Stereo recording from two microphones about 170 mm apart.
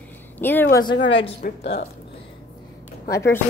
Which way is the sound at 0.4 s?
10° left (ahead or behind).